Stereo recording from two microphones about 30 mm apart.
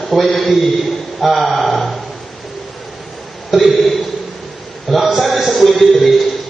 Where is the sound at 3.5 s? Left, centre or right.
Centre.